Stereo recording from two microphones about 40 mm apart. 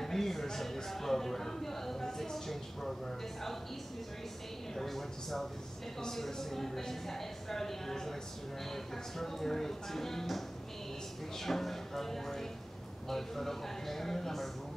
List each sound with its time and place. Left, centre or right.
0.0 s a sound: centre
0.7 s speech: centre
4.7 s speech: centre